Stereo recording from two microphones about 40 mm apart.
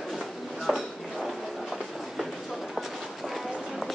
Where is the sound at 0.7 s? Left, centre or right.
Centre.